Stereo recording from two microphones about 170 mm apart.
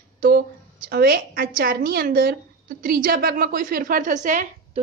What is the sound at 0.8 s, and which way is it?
A woman's voice, 60° right (ahead or behind).